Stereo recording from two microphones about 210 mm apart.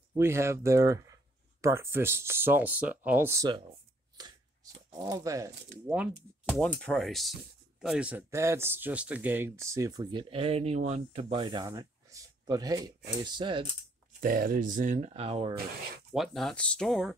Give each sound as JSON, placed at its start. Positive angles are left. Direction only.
{"t": 0.2, "sound": "speech", "side_deg": -10}
{"t": 4.9, "sound": "speech", "side_deg": -20}
{"t": 6.5, "sound": "speech", "side_deg": 0}
{"t": 14.2, "sound": "speech", "side_deg": -40}
{"t": 16.1, "sound": "speech", "side_deg": 0}